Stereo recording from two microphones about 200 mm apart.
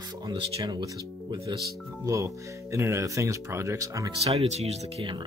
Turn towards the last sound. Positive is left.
turn(degrees=-30)  # may be behind; listen again after turning